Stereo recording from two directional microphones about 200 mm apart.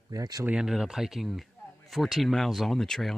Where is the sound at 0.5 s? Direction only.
5° right (ahead or behind).